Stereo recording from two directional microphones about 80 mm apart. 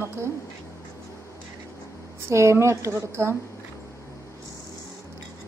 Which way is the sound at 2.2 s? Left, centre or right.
Right.